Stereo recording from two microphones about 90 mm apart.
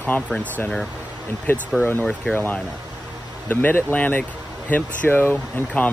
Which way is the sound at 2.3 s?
20° left (ahead or behind).